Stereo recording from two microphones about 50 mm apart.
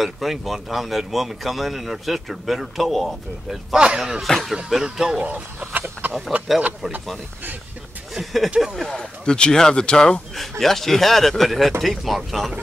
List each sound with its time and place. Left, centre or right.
0.0 s speech: centre
3.7 s speech: centre
4.2 s speech: centre
4.8 s speech: centre
5.7 s a sound: right
8.1 s speech: centre
8.8 s speech: centre
10.6 s speech: centre